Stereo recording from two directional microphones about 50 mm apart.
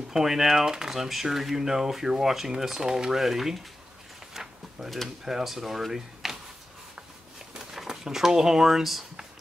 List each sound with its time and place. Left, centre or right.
0.1 s speech: centre
4.3 s a sound: centre
5.2 s speech: centre
7.5 s speech: centre